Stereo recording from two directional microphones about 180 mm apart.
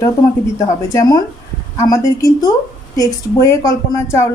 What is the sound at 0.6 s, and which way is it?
A woman's voice, 20° left (ahead or behind).